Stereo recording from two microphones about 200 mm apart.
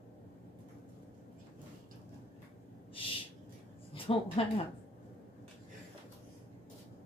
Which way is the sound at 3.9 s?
25° left (ahead or behind).